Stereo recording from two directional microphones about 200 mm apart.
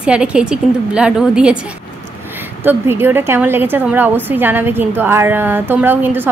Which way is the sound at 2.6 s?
10° right (ahead or behind).